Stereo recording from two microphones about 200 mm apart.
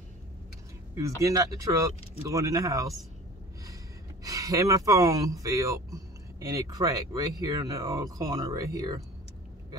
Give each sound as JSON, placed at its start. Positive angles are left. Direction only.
{"t": 1.2, "sound": "speech", "side_deg": -15}
{"t": 4.2, "sound": "speech", "side_deg": -15}